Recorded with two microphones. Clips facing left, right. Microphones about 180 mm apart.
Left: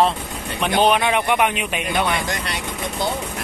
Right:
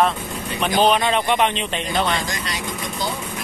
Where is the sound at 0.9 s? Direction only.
15° left (ahead or behind).